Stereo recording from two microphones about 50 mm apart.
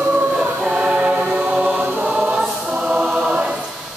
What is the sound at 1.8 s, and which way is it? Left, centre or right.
Choir, right.